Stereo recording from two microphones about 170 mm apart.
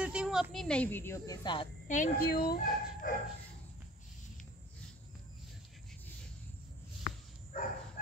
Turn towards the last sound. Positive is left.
turn(degrees=50)  # may be behind; listen again after turning